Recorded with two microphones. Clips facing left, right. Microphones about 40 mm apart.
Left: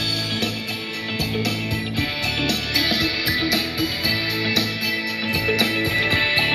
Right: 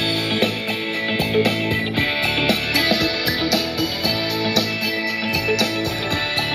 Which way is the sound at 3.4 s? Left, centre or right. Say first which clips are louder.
Right 2 dB; centre.